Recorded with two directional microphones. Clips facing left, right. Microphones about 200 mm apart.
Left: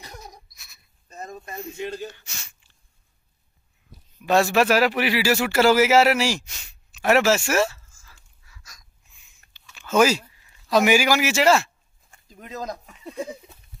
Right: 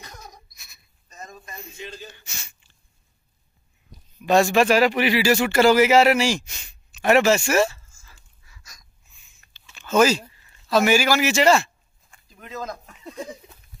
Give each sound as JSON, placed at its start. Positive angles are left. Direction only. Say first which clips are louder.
{"t": 1.3, "sound": "speech", "louder": "left 6 dB", "side_deg": 55}
{"t": 2.1, "sound": "speech", "louder": "right 1 dB", "side_deg": 0}
{"t": 4.3, "sound": "a man's voice", "louder": "right 1 dB", "side_deg": 5}
{"t": 12.9, "sound": "a sound", "louder": "left 3 dB", "side_deg": 10}